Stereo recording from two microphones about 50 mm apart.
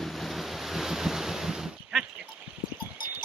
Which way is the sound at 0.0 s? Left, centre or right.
Centre.